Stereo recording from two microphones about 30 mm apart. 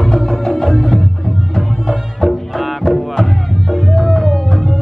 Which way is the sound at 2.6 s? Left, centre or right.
Centre.